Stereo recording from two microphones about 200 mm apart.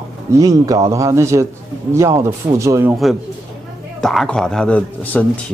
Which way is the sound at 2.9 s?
Centre (ahead or behind).